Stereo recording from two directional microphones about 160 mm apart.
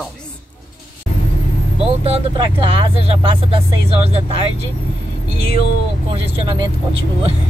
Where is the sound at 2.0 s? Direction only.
30° right (ahead or behind).